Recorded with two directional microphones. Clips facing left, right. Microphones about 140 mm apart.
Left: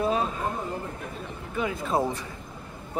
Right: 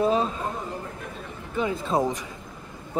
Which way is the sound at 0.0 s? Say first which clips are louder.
Right 3 dB; 30° right (ahead or behind).